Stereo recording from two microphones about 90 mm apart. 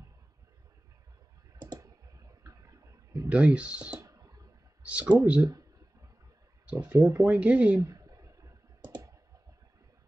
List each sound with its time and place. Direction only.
1.8 s clicking: 40° right (ahead or behind)
3.3 s speech: 15° right (ahead or behind)
4.0 s clicking: 40° right (ahead or behind)
4.8 s speech: 15° right (ahead or behind)
6.6 s speech: 15° right (ahead or behind)
7.0 s speech: 30° right (ahead or behind)
7.2 s speech: 15° right (ahead or behind)
7.8 s a sound: 40° right (ahead or behind)
8.8 s clicking: 55° right (ahead or behind)